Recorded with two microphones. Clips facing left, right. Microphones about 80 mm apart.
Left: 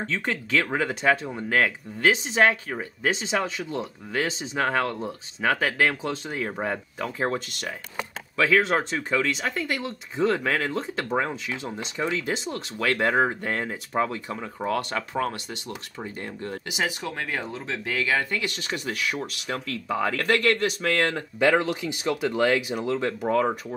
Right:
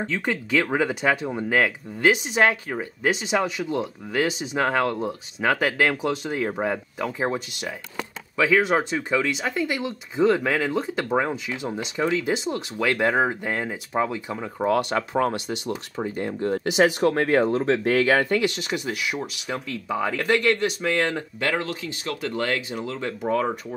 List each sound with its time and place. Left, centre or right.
0.0 s speech: centre
13.0 s speech: centre
15.0 s speech: right
15.4 s speech: centre
16.4 s speech: right
18.2 s speech: right; by 21.2 s centre
21.4 s speech: centre